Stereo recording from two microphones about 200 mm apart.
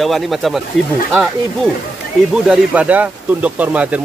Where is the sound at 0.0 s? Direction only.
Centre (ahead or behind).